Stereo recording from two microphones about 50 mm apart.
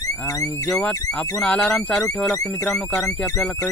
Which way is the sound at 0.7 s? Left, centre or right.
Left.